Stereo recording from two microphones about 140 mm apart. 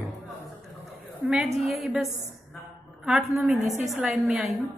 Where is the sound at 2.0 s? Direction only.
50° right (ahead or behind).